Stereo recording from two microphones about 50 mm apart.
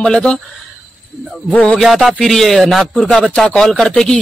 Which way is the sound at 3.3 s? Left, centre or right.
Centre.